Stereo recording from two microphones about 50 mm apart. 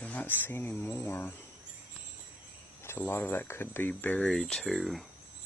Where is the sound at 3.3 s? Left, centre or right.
Left.